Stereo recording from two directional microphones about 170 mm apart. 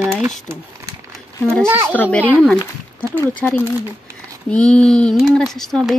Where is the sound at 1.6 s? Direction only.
15° right (ahead or behind).